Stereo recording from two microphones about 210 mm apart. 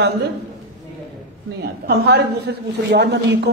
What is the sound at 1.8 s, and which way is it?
A man's voice, 50° right (ahead or behind).